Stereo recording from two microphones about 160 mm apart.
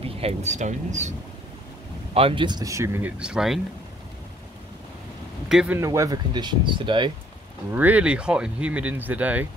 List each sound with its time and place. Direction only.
0.0 s speech: 40° right (ahead or behind)
2.1 s speech: 35° right (ahead or behind); by 3.6 s 5° right (ahead or behind)
5.5 s speech: 5° right (ahead or behind)
5.8 s speech: 20° right (ahead or behind)
7.7 s speech: 10° right (ahead or behind)